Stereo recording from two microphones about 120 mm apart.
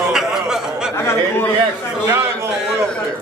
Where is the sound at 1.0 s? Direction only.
20° left (ahead or behind).